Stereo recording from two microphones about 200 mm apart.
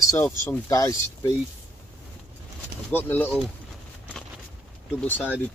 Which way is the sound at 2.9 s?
10° left (ahead or behind).